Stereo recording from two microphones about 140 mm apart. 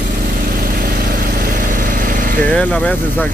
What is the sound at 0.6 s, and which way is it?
Vehicle, 90° right.